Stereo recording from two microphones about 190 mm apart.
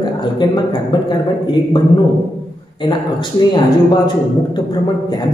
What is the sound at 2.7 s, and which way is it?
A woman's voice, 25° left (ahead or behind).